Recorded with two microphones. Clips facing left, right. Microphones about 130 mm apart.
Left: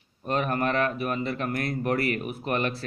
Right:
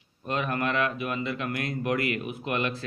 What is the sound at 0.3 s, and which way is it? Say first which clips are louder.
Speech: left 2 dB; 40° left (ahead or behind).